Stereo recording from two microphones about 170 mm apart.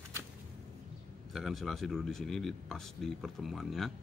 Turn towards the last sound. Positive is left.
turn(degrees=0)  # may be behind; listen again after turning